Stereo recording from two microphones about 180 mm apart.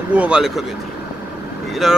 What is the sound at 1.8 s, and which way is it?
Speech, centre (ahead or behind).